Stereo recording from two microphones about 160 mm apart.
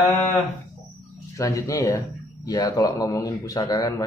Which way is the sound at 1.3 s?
20° left (ahead or behind).